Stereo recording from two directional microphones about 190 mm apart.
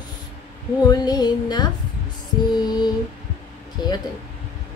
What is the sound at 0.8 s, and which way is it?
Music, 20° left (ahead or behind).